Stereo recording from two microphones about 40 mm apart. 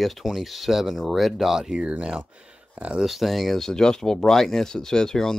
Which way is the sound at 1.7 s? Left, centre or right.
Right.